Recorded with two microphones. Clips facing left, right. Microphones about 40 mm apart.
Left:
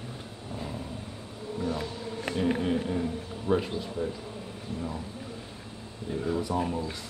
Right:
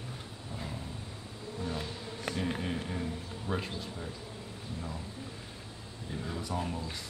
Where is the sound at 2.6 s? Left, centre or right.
Centre.